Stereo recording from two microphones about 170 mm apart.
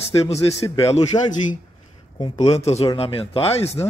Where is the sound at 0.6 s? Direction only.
20° left (ahead or behind).